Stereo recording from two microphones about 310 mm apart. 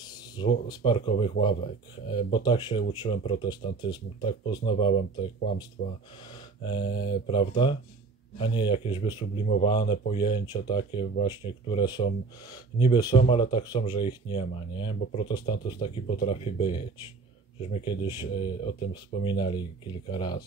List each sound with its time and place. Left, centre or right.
0.0 s a man's voice: centre